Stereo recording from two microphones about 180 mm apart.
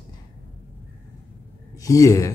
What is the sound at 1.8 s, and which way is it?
Speech, 20° left (ahead or behind).